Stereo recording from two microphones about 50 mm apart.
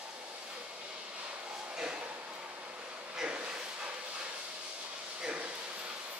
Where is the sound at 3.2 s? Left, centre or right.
Centre.